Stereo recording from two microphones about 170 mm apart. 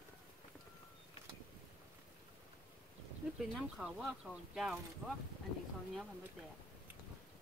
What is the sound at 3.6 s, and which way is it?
Speech, centre (ahead or behind).